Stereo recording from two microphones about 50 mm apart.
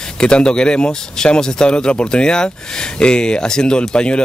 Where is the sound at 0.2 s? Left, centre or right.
Centre.